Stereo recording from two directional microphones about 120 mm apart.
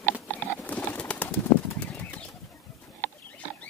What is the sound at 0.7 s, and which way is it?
Bird, 10° left (ahead or behind).